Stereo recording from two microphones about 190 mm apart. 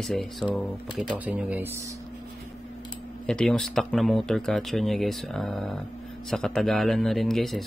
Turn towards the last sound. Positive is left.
turn(degrees=0)  # may be behind; listen again after turning